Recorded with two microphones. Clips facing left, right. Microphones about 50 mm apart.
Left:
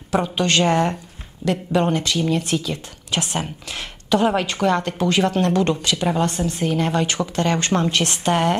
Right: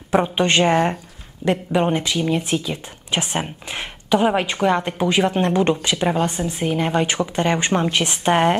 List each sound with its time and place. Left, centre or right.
0.1 s a woman's voice: right